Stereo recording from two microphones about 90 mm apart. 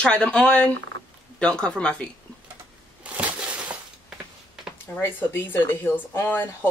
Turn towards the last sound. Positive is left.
turn(degrees=25)  # may be behind; listen again after turning